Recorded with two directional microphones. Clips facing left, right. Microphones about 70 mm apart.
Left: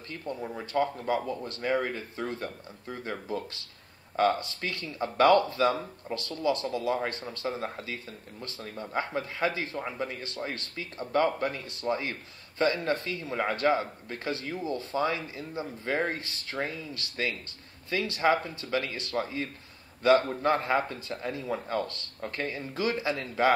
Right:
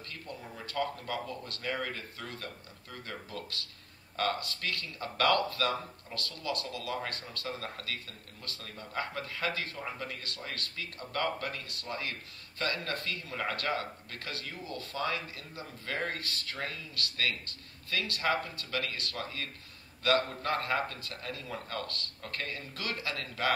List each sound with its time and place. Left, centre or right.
0.3 s speech: left